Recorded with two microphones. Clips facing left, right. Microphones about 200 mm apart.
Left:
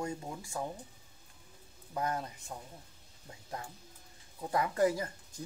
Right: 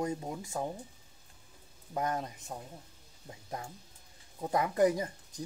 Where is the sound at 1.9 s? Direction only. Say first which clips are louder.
Right 2 dB; 20° right (ahead or behind).